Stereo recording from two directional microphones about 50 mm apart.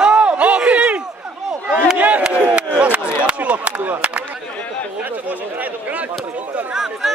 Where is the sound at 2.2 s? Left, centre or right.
Right.